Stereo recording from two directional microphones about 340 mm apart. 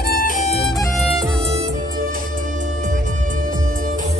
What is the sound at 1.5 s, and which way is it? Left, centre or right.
Music, right.